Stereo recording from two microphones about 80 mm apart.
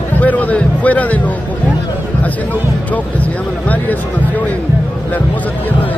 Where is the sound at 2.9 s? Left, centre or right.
Centre.